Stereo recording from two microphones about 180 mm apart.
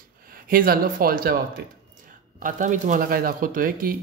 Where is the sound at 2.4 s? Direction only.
45° right (ahead or behind).